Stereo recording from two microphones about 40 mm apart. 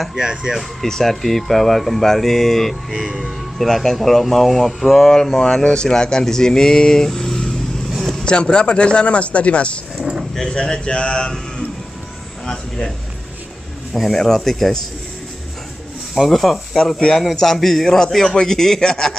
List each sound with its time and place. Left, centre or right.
0.1 s speech: centre
0.8 s speech: centre
5.1 s speech: centre
7.1 s vehicle: centre
8.1 s speech: left
12.4 s speech: centre
13.9 s speech: centre
16.2 s speech: centre